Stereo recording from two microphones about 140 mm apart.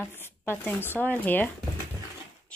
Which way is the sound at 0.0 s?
15° left (ahead or behind).